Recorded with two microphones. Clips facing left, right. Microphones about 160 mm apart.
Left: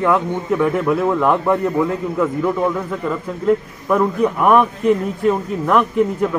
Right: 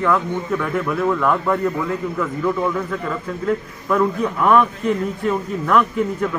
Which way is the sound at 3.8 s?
15° left (ahead or behind).